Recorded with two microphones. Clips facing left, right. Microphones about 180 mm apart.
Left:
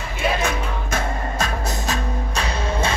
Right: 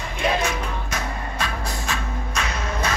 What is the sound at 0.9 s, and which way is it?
Music, 40° left (ahead or behind).